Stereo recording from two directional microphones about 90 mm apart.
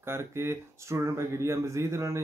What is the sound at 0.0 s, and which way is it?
Speech, 30° right (ahead or behind).